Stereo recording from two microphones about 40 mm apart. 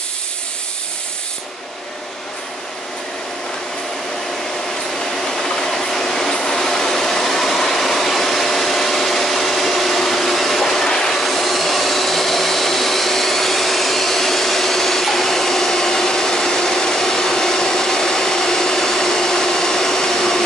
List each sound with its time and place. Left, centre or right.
5.4 s train: centre